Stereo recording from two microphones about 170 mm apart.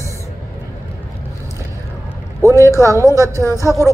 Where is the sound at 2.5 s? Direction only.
15° left (ahead or behind).